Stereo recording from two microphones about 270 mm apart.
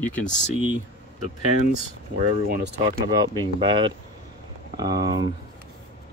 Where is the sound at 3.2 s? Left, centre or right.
Centre.